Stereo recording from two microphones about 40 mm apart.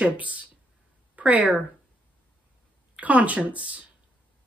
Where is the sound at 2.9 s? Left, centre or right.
Right.